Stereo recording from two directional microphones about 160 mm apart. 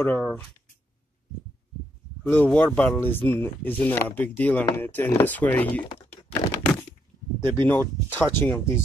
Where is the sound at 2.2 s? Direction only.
10° left (ahead or behind).